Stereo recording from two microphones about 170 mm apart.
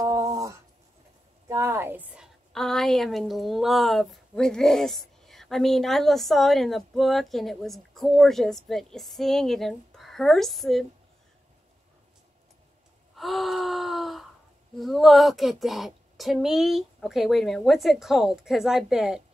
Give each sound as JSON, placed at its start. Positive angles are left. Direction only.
{"t": 0.0, "sound": "a sound", "side_deg": -20}
{"t": 1.5, "sound": "speech", "side_deg": -15}
{"t": 2.5, "sound": "speech", "side_deg": 0}
{"t": 13.1, "sound": "gasp", "side_deg": 0}
{"t": 14.8, "sound": "speech", "side_deg": 0}